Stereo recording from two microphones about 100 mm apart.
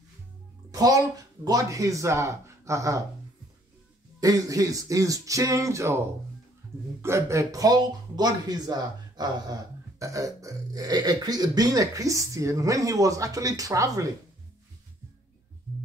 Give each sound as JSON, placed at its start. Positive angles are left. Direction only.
{"t": 0.7, "sound": "speech", "side_deg": -40}
{"t": 4.2, "sound": "speech", "side_deg": -35}